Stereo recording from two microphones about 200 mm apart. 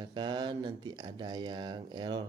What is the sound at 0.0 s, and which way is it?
Speech, 25° right (ahead or behind).